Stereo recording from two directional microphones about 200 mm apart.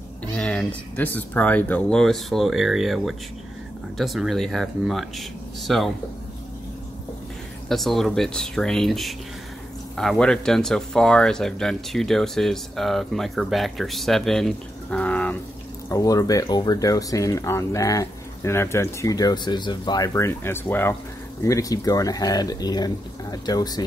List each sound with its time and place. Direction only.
0.4 s speech: 5° left (ahead or behind)
7.6 s speech: centre (ahead or behind)
15.9 s speech: 15° left (ahead or behind)